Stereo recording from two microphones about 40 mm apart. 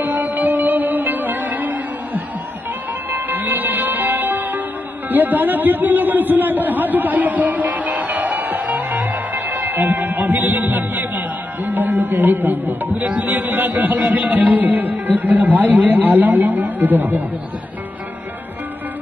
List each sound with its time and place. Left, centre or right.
0.0 s music: right
5.1 s a man's voice: right